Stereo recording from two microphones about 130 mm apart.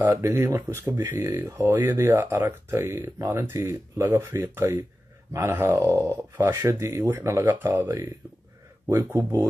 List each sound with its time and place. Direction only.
0.0 s speech: 20° right (ahead or behind)
9.1 s speech: 30° right (ahead or behind)